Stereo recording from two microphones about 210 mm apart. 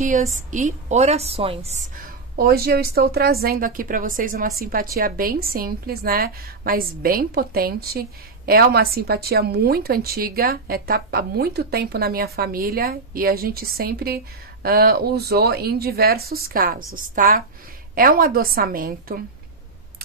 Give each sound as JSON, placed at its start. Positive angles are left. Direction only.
{"t": 0.0, "sound": "a woman's voice", "side_deg": -35}
{"t": 2.0, "sound": "a woman's voice", "side_deg": -45}